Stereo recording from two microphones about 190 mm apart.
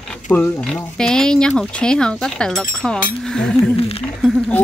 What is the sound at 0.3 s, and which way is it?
Speech, 5° left (ahead or behind).